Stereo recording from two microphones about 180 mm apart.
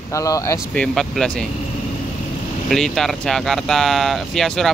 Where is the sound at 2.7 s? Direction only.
Centre (ahead or behind).